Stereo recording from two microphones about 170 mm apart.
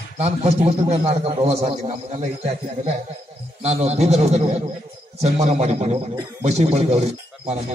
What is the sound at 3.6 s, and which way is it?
A man's voice, 40° right (ahead or behind).